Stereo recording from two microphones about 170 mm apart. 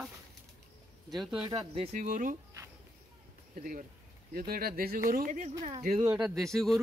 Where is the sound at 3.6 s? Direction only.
55° right (ahead or behind).